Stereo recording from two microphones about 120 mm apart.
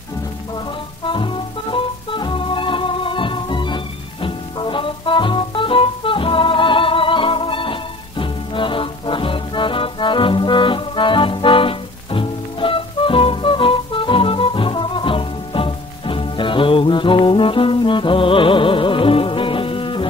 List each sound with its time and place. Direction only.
1.0 s music: 45° left (ahead or behind)